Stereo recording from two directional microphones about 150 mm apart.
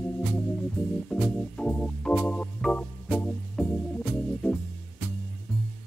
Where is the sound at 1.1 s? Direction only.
5° left (ahead or behind).